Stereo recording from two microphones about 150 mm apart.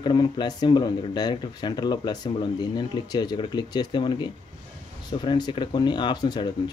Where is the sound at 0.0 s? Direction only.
30° left (ahead or behind).